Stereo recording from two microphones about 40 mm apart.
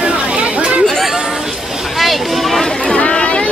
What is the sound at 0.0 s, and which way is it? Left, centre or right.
Chatter, right.